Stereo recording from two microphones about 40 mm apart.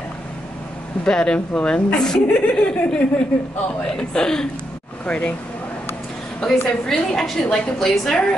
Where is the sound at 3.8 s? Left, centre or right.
Centre.